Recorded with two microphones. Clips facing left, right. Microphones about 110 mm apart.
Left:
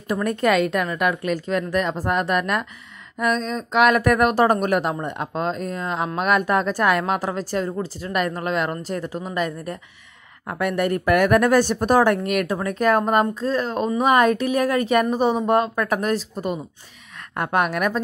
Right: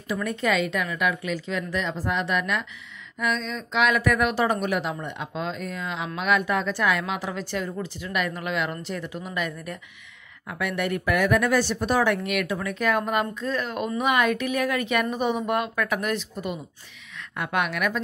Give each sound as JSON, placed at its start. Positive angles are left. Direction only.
{"t": 0.1, "sound": "speech", "side_deg": 50}